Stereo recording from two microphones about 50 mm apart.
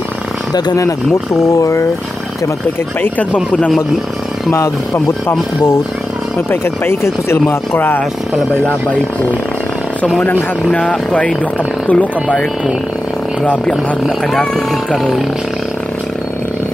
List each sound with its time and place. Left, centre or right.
1.6 s speech: left
4.5 s speech: left
6.5 s speech: left
7.7 s speech: left
10.7 s speech: left
13.5 s speech: left
14.0 s speech: centre